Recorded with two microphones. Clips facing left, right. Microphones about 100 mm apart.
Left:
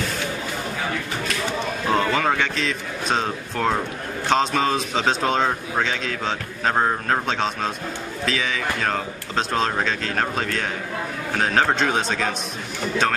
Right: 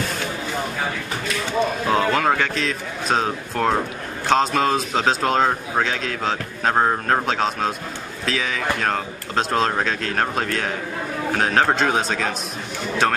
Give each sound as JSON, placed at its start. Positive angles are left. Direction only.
{"t": 1.9, "sound": "speech", "side_deg": 0}